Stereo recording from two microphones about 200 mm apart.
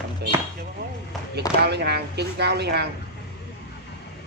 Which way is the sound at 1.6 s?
55° right (ahead or behind).